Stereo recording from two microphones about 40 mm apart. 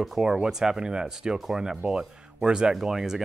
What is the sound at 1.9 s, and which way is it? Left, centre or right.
Speech, centre.